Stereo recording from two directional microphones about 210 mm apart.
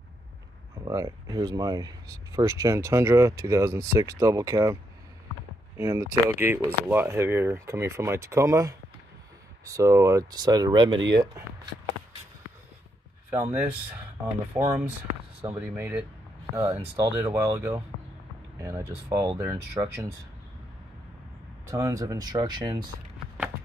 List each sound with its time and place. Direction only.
0.8 s speech: 15° right (ahead or behind)
5.8 s speech: 15° right (ahead or behind)
13.3 s speech: 10° right (ahead or behind)
19.4 s speech: 10° right (ahead or behind)
21.6 s speech: 15° right (ahead or behind)